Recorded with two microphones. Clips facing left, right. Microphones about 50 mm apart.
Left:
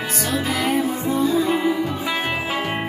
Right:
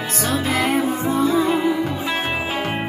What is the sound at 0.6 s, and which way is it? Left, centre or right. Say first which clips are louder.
Music: right 2 dB; right.